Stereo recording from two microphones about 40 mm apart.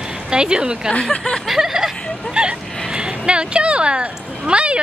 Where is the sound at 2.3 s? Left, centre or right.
Right.